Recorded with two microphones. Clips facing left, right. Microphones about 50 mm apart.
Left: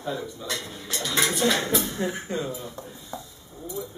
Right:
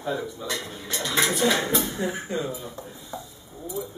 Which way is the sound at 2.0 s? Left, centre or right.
Centre.